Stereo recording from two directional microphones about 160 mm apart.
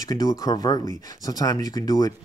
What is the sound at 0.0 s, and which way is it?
Speech, 20° left (ahead or behind).